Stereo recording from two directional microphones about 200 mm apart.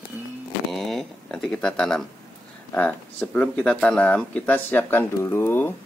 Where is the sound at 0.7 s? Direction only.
Centre (ahead or behind).